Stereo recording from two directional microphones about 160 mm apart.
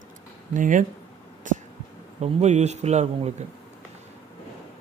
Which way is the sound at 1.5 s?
50° right (ahead or behind).